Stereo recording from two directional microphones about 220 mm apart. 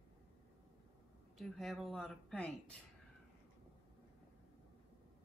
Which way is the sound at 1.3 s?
Centre (ahead or behind).